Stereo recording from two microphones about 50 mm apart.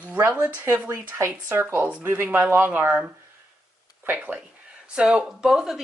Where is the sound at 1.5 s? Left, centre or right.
Right.